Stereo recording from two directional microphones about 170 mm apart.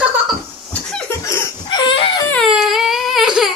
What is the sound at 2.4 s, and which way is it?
Baby cry, centre (ahead or behind).